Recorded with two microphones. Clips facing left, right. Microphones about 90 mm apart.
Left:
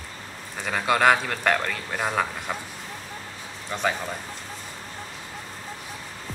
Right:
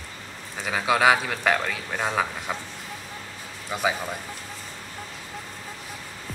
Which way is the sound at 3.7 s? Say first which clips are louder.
Right 1 dB; 5° right (ahead or behind).